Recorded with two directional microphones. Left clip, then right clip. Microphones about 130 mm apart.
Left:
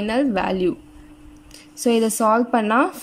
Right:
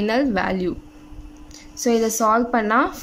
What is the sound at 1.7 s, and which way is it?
A woman's voice, 15° left (ahead or behind).